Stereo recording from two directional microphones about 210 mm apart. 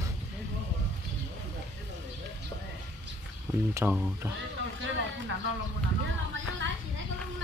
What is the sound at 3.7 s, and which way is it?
Speech, 10° right (ahead or behind).